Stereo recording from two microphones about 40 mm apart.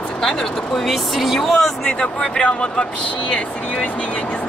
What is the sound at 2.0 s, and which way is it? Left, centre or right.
Speech, left.